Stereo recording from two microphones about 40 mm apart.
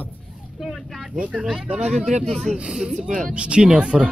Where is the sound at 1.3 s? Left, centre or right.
Centre.